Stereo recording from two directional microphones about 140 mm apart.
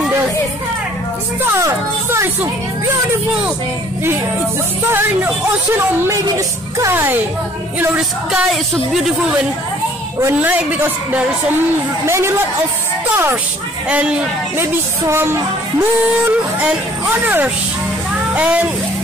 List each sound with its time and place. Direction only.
1.4 s music: 20° right (ahead or behind)
6.0 s a woman's voice: 20° right (ahead or behind)
10.2 s a woman's voice: 10° right (ahead or behind)
13.1 s a woman's voice: 15° right (ahead or behind)
14.6 s a woman's voice: 15° right (ahead or behind)
16.6 s a woman's voice: 15° right (ahead or behind)